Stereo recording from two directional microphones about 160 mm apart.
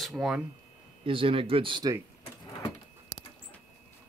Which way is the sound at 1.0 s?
35° right (ahead or behind).